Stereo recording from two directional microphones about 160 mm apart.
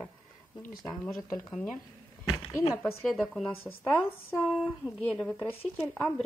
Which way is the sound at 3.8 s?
15° left (ahead or behind).